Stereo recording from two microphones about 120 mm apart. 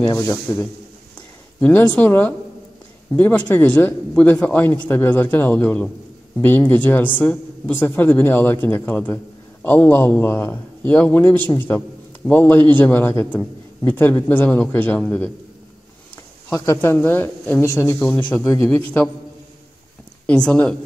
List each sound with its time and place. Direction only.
1.6 s a woman's voice: 15° left (ahead or behind)
16.6 s speech: 20° left (ahead or behind)
20.2 s a woman's voice: 10° left (ahead or behind)